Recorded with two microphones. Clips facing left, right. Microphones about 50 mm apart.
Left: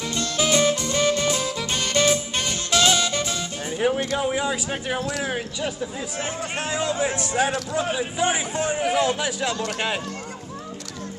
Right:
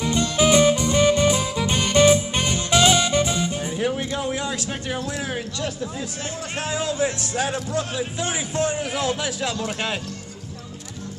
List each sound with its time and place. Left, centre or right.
0.0 s music: centre
3.7 s music: centre
4.2 s a man's voice: centre